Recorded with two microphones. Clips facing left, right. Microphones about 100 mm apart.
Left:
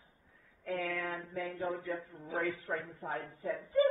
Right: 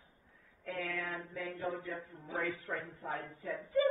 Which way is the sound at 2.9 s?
55° left (ahead or behind).